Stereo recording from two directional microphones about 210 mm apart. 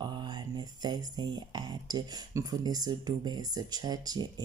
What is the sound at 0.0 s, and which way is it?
Speech, 20° right (ahead or behind).